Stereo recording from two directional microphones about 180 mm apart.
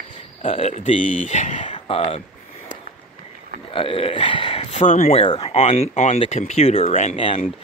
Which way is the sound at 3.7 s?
30° left (ahead or behind).